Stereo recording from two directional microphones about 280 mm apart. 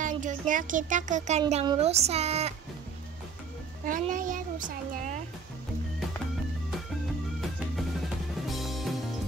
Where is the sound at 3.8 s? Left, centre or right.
Right.